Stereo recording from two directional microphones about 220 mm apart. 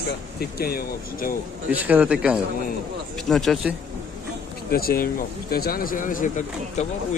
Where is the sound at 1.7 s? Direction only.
5° right (ahead or behind).